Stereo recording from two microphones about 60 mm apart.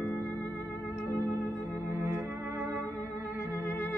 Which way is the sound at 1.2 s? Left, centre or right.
Right.